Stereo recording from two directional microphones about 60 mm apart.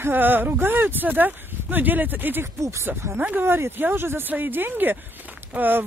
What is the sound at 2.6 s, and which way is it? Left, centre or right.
Speech, right.